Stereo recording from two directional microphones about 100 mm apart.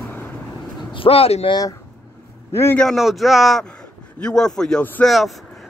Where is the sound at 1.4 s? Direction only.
40° left (ahead or behind).